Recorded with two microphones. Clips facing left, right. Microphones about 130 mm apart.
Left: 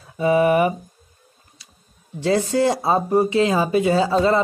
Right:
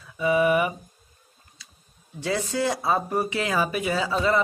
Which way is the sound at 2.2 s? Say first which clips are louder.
Left 7 dB; 30° left (ahead or behind).